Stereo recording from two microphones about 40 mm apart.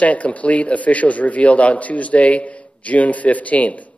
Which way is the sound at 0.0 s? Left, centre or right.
Left.